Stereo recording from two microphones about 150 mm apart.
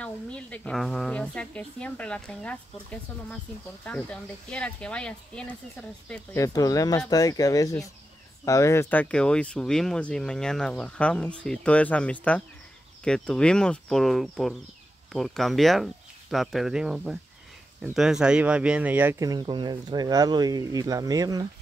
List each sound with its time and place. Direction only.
0.0 s speech: 10° left (ahead or behind)
6.3 s speech: 20° left (ahead or behind); by 19.2 s 10° right (ahead or behind)
19.2 s speech: 30° right (ahead or behind)